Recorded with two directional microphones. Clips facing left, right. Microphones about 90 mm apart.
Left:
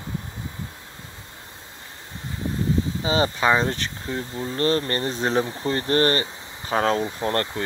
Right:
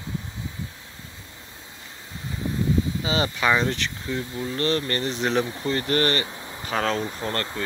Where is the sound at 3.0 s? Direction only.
30° left (ahead or behind).